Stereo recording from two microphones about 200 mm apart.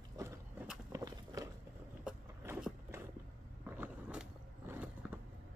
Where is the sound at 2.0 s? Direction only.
5° right (ahead or behind).